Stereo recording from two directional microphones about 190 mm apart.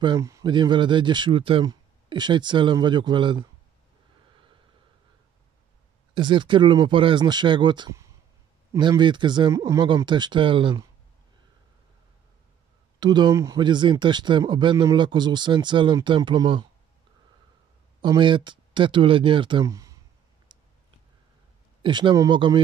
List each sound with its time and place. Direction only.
0.0 s speech: 20° right (ahead or behind)
6.1 s speech: 25° right (ahead or behind)
13.0 s speech: 20° right (ahead or behind)
18.0 s speech: 25° right (ahead or behind)
20.5 s a sound: 25° right (ahead or behind)
21.8 s speech: 25° right (ahead or behind)